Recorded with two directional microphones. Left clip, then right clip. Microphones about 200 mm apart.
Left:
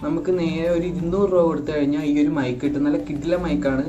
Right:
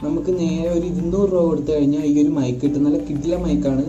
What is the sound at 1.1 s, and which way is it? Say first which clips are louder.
Speech: even; 30° left (ahead or behind).